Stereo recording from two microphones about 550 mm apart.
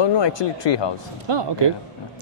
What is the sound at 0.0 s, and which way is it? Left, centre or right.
Speech, left.